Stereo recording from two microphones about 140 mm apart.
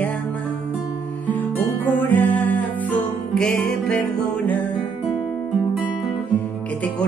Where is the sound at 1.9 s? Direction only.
15° left (ahead or behind).